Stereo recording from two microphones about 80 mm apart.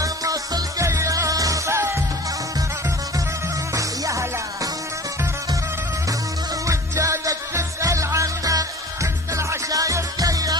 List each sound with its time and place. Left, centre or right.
0.0 s music: right
3.7 s music: right
6.6 s music: right